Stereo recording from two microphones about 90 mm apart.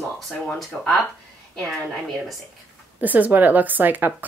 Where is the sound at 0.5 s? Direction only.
5° left (ahead or behind).